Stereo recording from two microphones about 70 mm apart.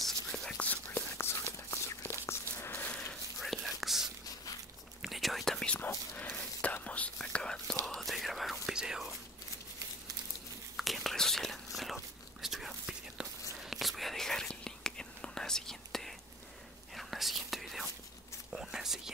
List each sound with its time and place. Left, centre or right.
0.0 s whispering: centre
0.9 s a sound: left
3.3 s whispering: centre
6.1 s whispering: left; by 9.1 s centre
10.8 s whispering: centre